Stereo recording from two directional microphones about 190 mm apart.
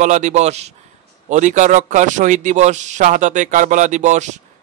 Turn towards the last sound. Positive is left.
turn(degrees=-40)  # may be behind; listen again after turning